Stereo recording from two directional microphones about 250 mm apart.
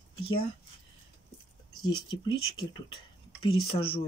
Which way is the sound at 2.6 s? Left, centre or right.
Centre.